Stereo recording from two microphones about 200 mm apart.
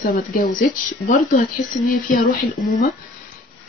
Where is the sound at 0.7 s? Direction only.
40° left (ahead or behind).